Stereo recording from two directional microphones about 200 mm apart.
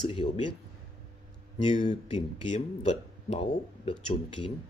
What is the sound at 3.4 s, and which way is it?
Speech, 25° left (ahead or behind).